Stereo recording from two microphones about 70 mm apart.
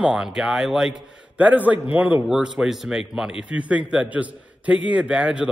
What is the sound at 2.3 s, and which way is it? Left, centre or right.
A man's voice, centre.